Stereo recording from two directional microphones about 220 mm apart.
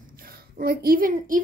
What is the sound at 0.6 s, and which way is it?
Speech, 45° right (ahead or behind).